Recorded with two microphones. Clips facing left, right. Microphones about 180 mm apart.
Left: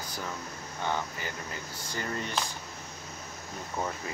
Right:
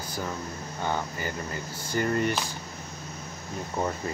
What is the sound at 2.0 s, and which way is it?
Speech, 60° right (ahead or behind).